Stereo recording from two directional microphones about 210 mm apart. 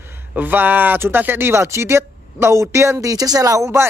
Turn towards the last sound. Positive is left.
turn(degrees=-15)  # may be behind; listen again after turning